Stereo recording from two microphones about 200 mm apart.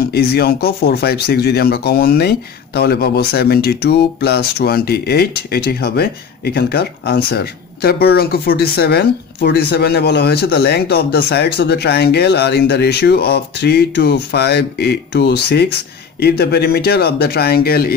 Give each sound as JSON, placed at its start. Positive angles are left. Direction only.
{"t": 0.0, "sound": "speech", "side_deg": 55}